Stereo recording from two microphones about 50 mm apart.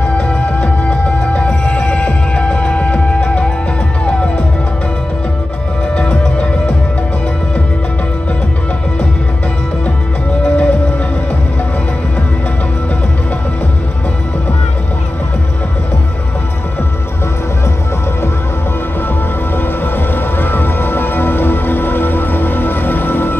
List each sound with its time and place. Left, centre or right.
0.6 s music: left
5.9 s music: left
10.4 s music: left
19.5 s music: left